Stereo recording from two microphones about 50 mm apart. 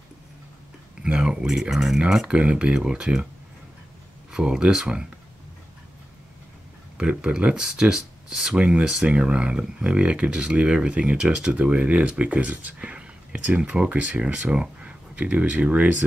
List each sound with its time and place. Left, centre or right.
1.0 s speech: centre
2.2 s speech: right
4.3 s speech: centre
7.0 s speech: right